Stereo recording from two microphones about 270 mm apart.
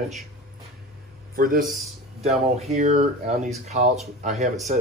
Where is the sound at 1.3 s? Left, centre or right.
Right.